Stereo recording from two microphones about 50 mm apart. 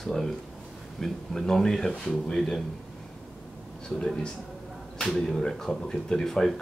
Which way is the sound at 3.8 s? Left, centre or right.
Centre.